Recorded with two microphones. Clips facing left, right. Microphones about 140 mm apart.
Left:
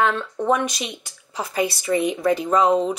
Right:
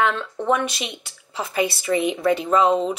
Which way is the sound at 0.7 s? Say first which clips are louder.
Left 1 dB; 25° right (ahead or behind).